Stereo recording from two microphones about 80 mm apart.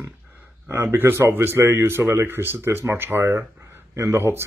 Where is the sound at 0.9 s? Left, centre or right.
Right.